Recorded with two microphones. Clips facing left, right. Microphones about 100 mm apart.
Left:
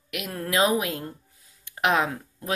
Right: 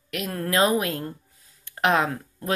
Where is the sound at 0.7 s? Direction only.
10° left (ahead or behind).